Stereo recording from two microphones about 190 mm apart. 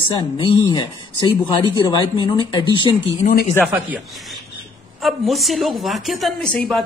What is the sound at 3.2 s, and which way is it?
Speech, 45° left (ahead or behind).